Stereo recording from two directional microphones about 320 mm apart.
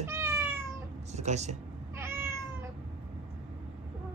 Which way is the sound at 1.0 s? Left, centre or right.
Right.